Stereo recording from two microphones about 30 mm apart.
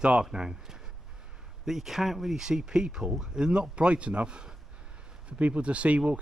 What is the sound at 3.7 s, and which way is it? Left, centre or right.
Speech, right.